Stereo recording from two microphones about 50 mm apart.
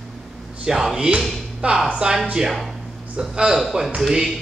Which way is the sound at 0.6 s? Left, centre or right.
Centre.